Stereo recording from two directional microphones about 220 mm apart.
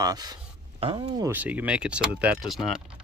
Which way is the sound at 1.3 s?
5° right (ahead or behind).